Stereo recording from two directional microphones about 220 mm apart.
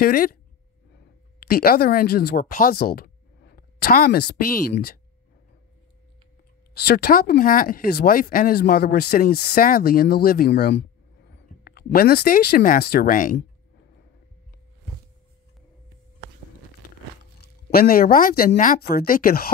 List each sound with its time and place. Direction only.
0.0 s speech: 40° left (ahead or behind)
1.4 s speech: 45° left (ahead or behind)
6.7 s speech: 45° left (ahead or behind)
17.4 s speech: 45° left (ahead or behind)